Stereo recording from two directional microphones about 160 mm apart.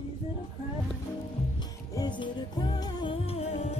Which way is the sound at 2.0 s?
30° left (ahead or behind).